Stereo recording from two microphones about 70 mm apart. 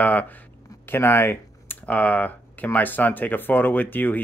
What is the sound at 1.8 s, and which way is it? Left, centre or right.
Speech, left.